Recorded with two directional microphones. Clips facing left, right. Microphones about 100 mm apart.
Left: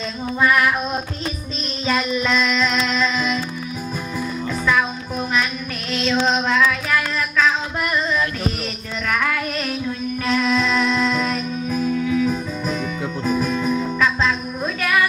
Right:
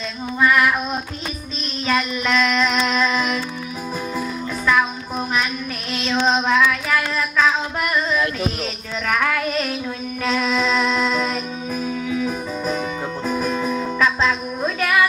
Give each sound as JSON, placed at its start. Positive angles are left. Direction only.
{"t": 1.9, "sound": "music", "side_deg": 5}
{"t": 2.9, "sound": "female singing", "side_deg": -10}
{"t": 6.1, "sound": "female singing", "side_deg": -10}
{"t": 9.0, "sound": "music", "side_deg": -5}